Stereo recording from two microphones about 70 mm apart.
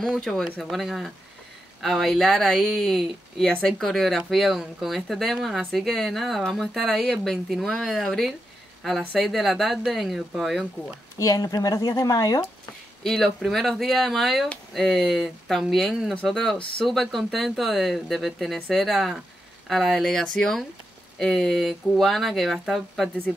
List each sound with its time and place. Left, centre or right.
0.0 s speech: centre
11.1 s a woman's voice: left
13.0 s speech: centre